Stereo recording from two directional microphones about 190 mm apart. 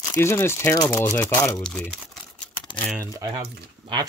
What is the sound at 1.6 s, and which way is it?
Speech, 5° left (ahead or behind).